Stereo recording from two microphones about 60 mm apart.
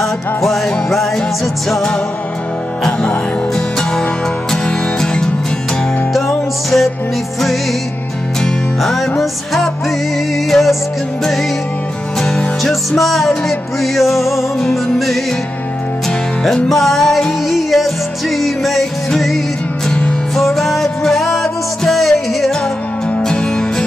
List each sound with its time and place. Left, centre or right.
0.0 s music: centre
8.4 s music: centre
12.2 s music: centre
16.4 s music: centre
19.9 s music: centre
20.3 s music: centre